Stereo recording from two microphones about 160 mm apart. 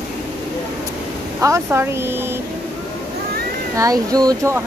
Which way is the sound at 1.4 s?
15° right (ahead or behind).